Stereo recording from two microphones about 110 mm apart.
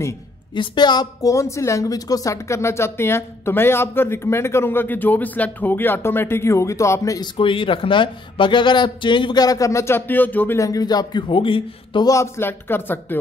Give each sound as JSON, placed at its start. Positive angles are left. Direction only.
{"t": 0.6, "sound": "a woman's voice", "side_deg": 40}
{"t": 7.3, "sound": "speech", "side_deg": 50}
{"t": 10.6, "sound": "a man's voice", "side_deg": 35}
{"t": 12.1, "sound": "a woman's voice", "side_deg": 25}